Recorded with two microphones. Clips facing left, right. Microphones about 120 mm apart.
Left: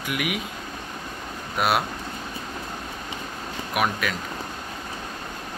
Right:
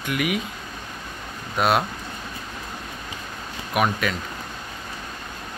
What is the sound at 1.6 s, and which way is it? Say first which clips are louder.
Speech: right 2 dB; 5° left (ahead or behind).